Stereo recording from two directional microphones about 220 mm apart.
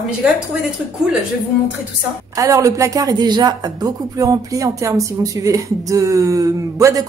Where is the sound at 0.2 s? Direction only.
5° right (ahead or behind).